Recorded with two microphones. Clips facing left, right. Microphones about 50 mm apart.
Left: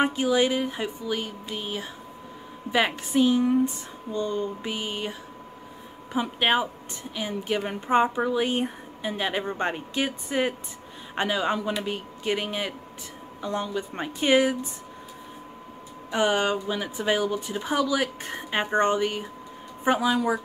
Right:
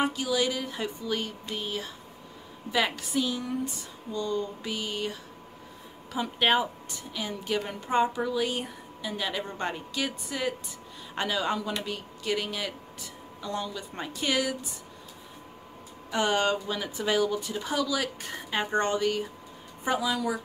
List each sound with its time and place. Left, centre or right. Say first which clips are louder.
0.0 s a woman's voice: left 5 dB; left
2.7 s a woman's voice: left 4 dB; left
6.1 s a woman's voice: left 1 dB; centre
16.1 s a woman's voice: left 2 dB; centre